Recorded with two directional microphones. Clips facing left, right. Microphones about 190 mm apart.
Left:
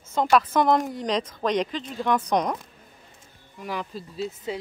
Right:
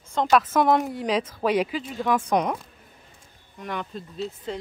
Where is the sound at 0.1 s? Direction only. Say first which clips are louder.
Even; centre (ahead or behind).